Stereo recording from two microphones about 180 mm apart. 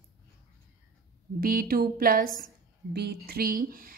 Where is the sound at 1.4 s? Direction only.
55° right (ahead or behind).